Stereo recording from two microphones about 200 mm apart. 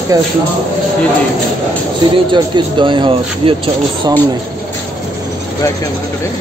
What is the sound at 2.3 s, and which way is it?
Speech, 25° right (ahead or behind).